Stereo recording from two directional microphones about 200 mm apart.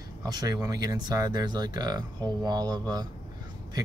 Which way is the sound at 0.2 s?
20° right (ahead or behind).